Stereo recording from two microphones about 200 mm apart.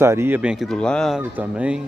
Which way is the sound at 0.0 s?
10° right (ahead or behind).